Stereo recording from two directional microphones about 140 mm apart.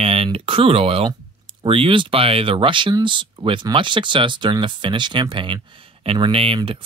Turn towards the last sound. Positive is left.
turn(degrees=-40)  # may be behind; listen again after turning